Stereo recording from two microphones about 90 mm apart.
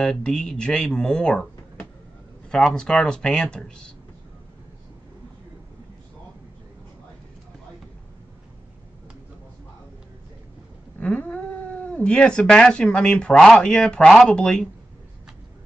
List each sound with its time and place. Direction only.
0.0 s speech: 10° left (ahead or behind)
2.5 s speech: 10° left (ahead or behind)
11.0 s speech: 15° left (ahead or behind)